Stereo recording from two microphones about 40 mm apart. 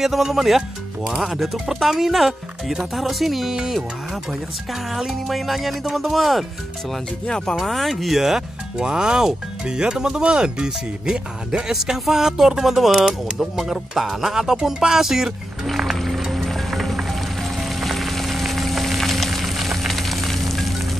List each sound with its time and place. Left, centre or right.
0.0 s speech: centre
5.3 s speech: centre
7.2 s speech: centre
7.6 s speech: centre
8.7 s speech: centre
15.6 s music: centre